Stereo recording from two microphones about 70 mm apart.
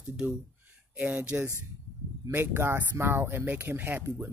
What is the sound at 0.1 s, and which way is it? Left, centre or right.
Speech, centre.